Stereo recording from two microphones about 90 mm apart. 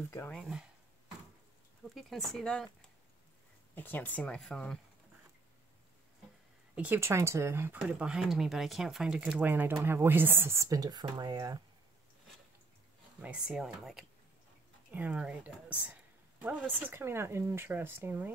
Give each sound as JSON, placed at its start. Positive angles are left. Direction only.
{"t": 0.4, "sound": "speech", "side_deg": -5}
{"t": 2.0, "sound": "speech", "side_deg": 0}
{"t": 3.7, "sound": "speech", "side_deg": 20}
{"t": 6.7, "sound": "a sound", "side_deg": -15}
{"t": 7.0, "sound": "speech", "side_deg": -30}
{"t": 8.0, "sound": "speech", "side_deg": -5}
{"t": 9.4, "sound": "speech", "side_deg": -20}
{"t": 13.2, "sound": "speech", "side_deg": -10}
{"t": 14.9, "sound": "speech", "side_deg": -15}